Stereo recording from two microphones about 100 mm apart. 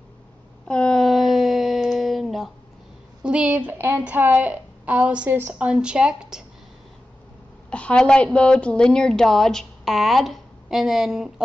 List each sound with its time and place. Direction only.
0.7 s a sound: 10° left (ahead or behind)
3.2 s a woman's voice: 10° right (ahead or behind)
7.7 s a woman's voice: 10° left (ahead or behind)